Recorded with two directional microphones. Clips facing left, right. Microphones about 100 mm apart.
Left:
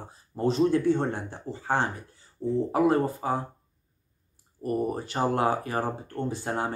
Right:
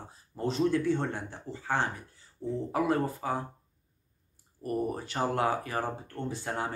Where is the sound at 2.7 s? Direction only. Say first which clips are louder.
Left 4 dB; 25° left (ahead or behind).